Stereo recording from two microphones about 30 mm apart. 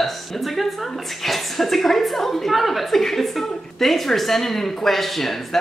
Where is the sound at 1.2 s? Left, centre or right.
Centre.